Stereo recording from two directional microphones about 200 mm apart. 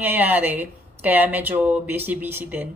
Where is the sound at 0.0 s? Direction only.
10° right (ahead or behind).